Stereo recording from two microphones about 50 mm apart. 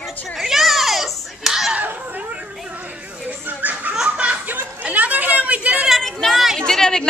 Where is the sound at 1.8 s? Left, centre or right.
Right.